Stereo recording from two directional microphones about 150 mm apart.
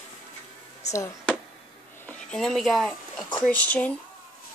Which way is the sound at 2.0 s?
5° left (ahead or behind).